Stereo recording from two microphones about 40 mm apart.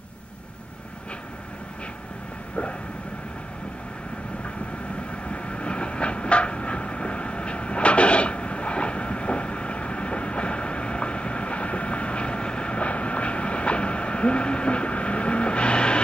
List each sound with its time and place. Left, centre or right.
5.3 s train: left